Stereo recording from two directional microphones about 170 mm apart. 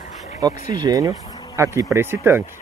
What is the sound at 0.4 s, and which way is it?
Speech, 20° right (ahead or behind).